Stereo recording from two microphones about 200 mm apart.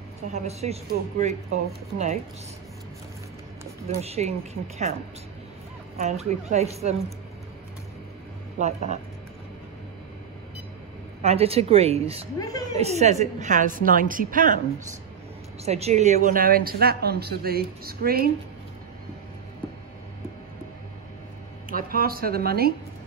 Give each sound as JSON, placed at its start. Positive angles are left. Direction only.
{"t": 0.3, "sound": "a woman's voice", "side_deg": -30}
{"t": 3.8, "sound": "a woman's voice", "side_deg": -30}
{"t": 8.5, "sound": "a woman's voice", "side_deg": -35}
{"t": 11.2, "sound": "a woman's voice", "side_deg": -30}
{"t": 12.4, "sound": "a woman's voice", "side_deg": 20}
{"t": 12.7, "sound": "a woman's voice", "side_deg": -35}
{"t": 15.6, "sound": "a woman's voice", "side_deg": -30}
{"t": 21.6, "sound": "speech", "side_deg": -45}